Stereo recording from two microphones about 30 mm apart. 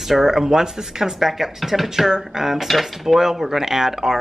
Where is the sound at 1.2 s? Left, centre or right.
Centre.